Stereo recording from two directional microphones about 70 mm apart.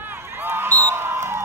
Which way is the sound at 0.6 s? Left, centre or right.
Right.